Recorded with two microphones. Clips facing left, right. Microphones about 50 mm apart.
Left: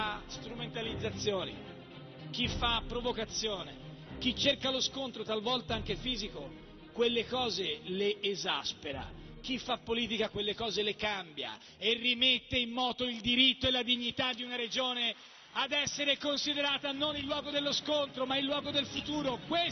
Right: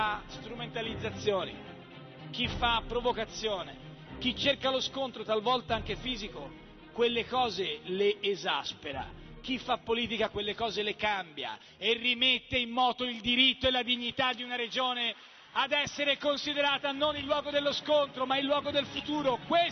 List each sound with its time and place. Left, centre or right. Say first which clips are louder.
0.0 s a man's voice: right 5 dB; centre
2.6 s a man's voice: right 6 dB; centre
18.8 s a man's voice: right 3 dB; centre